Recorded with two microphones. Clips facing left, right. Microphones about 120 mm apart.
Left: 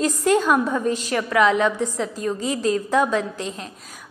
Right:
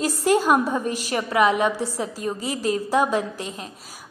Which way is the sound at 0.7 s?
20° right (ahead or behind).